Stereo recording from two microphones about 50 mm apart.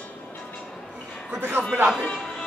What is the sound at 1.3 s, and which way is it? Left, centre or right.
Speech, right.